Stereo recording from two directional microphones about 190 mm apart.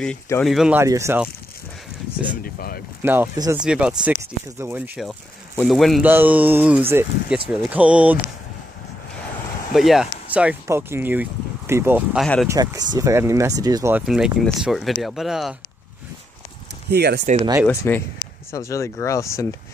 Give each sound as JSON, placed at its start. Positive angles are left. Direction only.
{"t": 0.5, "sound": "speech", "side_deg": -5}
{"t": 0.8, "sound": "speech", "side_deg": -15}
{"t": 2.4, "sound": "speech", "side_deg": 50}
{"t": 3.0, "sound": "speech", "side_deg": -10}
{"t": 5.6, "sound": "speech", "side_deg": 0}
{"t": 9.8, "sound": "speech", "side_deg": 0}
{"t": 12.4, "sound": "speech", "side_deg": -20}
{"t": 13.9, "sound": "speech", "side_deg": -5}
{"t": 16.9, "sound": "speech", "side_deg": -60}
{"t": 17.4, "sound": "speech", "side_deg": -20}
{"t": 17.6, "sound": "speech", "side_deg": 10}